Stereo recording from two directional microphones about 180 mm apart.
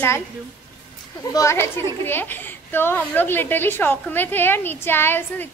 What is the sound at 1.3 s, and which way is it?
A woman's voice, 15° left (ahead or behind).